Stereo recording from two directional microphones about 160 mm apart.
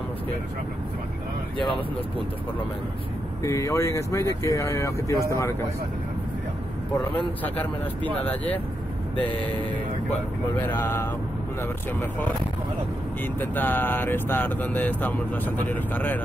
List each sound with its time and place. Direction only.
1.6 s speech: 35° left (ahead or behind)
3.4 s speech: 20° left (ahead or behind)
7.2 s speech: 10° left (ahead or behind)
10.6 s speech: 10° left (ahead or behind)